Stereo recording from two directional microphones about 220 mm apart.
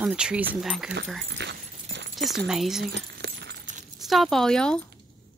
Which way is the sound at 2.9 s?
50° right (ahead or behind).